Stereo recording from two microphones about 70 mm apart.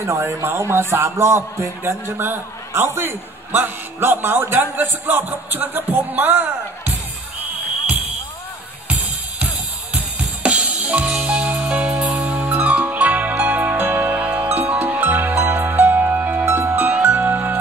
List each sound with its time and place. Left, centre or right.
0.0 s a man's voice: right
10.1 s drum kit: right
11.1 s music: centre
12.2 s music: right